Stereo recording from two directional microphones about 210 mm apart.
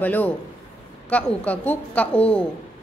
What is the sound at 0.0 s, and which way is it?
A woman's voice, 10° left (ahead or behind).